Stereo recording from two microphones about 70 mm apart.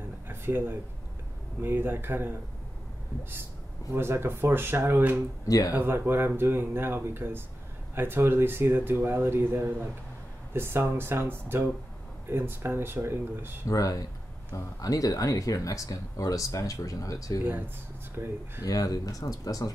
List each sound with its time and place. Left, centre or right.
0.3 s speech: right
3.9 s speech: right
13.7 s speech: left
18.1 s speech: right
18.7 s speech: left